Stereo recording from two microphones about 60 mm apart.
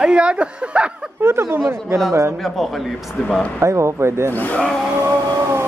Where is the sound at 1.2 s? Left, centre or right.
Right.